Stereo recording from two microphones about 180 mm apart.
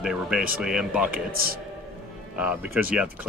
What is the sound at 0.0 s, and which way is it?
Speech, 5° right (ahead or behind).